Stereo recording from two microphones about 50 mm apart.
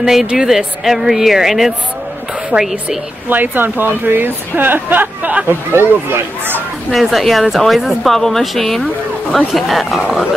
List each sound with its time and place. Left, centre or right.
0.0 s speech: centre
2.5 s a woman's voice: centre
3.3 s speech: right
5.5 s speech: right
6.9 s speech: centre